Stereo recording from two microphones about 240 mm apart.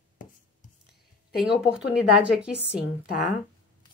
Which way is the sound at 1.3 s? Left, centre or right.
Centre.